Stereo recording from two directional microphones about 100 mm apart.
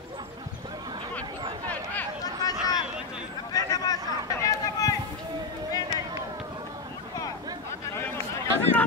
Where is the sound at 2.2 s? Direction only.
40° left (ahead or behind).